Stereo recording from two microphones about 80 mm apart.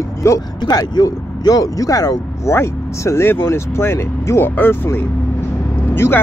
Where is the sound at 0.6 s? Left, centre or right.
Left.